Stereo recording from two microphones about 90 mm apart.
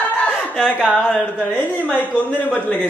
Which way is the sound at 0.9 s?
15° left (ahead or behind).